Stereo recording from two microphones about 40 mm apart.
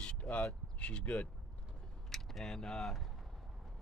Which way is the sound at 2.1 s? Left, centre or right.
Centre.